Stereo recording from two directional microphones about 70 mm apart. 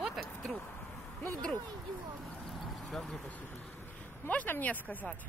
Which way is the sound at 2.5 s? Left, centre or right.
Centre.